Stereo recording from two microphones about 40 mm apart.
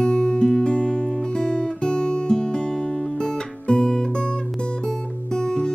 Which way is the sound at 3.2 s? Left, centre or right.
Centre.